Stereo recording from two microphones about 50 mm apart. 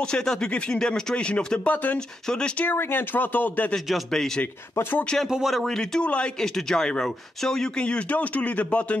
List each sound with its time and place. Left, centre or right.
0.0 s speech: centre; by 3.6 s left
3.9 s speech: centre
5.3 s speech: centre
6.4 s speech: centre
7.8 s speech: left